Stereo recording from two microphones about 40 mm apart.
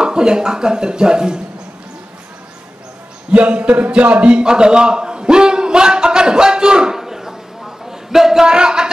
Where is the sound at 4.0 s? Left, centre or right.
Right.